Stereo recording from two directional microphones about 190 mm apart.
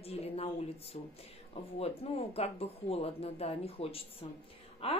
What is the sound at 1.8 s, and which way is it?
Speech, 30° left (ahead or behind).